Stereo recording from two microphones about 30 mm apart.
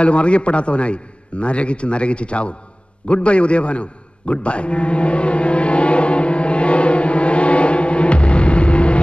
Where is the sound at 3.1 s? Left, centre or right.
Left.